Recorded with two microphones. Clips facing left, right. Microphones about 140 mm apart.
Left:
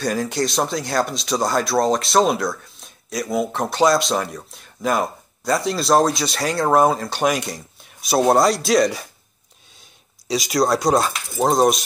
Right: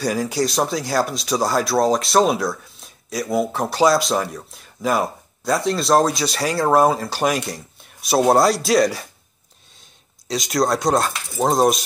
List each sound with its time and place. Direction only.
0.0 s speech: 5° right (ahead or behind)
10.2 s speech: centre (ahead or behind)